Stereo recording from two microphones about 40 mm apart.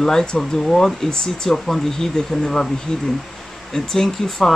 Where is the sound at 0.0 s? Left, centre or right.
Centre.